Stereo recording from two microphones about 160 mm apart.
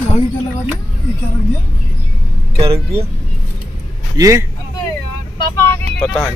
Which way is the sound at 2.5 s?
35° right (ahead or behind).